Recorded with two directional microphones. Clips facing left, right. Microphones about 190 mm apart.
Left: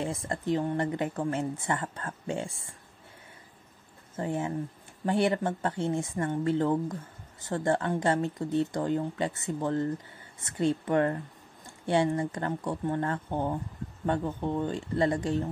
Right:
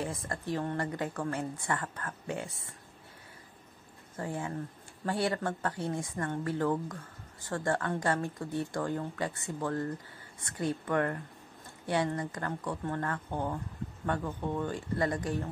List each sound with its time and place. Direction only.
0.0 s speech: 25° left (ahead or behind)
4.2 s speech: 20° left (ahead or behind)